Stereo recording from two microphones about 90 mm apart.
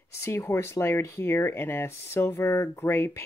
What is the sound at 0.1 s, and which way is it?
Speech, 30° left (ahead or behind).